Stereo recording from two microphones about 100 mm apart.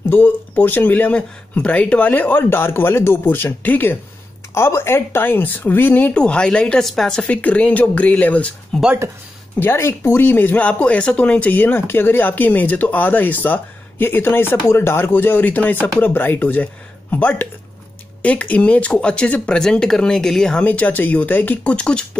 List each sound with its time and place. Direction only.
0.1 s speech: 20° left (ahead or behind)
9.6 s speech: 25° left (ahead or behind)